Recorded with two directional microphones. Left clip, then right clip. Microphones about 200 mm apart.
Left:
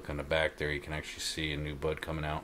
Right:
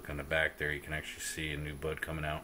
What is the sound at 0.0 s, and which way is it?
Speech, 10° left (ahead or behind).